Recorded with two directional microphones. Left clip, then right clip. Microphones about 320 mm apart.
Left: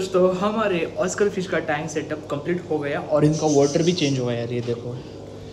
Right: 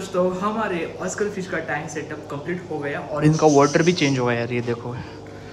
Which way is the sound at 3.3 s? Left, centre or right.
Centre.